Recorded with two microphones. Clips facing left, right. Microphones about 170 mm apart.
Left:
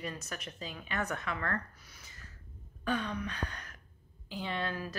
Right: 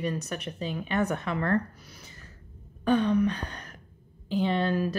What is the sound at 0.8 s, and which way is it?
Speech, 30° right (ahead or behind).